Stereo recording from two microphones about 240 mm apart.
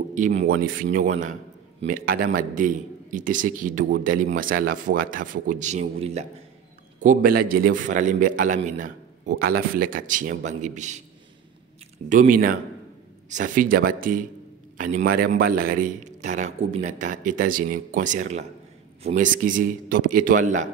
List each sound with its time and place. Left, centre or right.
0.1 s a man's voice: right
12.1 s a man's voice: right